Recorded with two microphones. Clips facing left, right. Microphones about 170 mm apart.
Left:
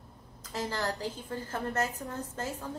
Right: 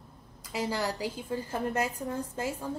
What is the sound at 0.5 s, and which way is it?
A woman's voice, 10° right (ahead or behind).